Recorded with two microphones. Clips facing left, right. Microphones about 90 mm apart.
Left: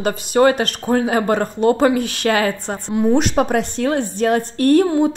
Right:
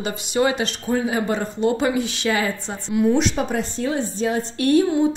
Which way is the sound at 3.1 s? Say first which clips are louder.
Left 5 dB; 55° left (ahead or behind).